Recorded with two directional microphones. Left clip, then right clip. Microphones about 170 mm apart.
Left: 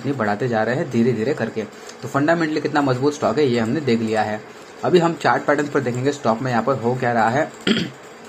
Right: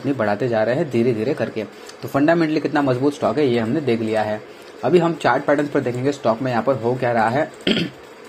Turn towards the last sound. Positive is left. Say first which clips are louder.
# even
turn(degrees=-15)  # may be behind; listen again after turning